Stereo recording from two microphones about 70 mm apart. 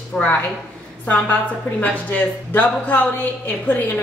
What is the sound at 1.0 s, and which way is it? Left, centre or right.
A woman's voice, left.